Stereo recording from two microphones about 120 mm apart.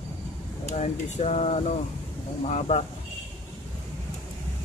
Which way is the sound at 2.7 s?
60° left (ahead or behind).